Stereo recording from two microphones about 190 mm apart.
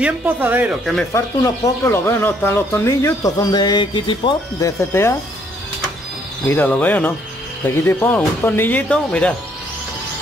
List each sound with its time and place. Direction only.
0.0 s speech: 10° right (ahead or behind)
1.1 s speech: 15° left (ahead or behind)
6.5 s speech: 10° left (ahead or behind)